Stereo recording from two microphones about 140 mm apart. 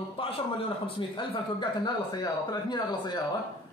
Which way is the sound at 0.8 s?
35° left (ahead or behind).